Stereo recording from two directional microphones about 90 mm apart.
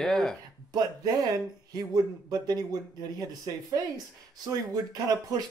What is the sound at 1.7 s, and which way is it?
Speech, 45° right (ahead or behind).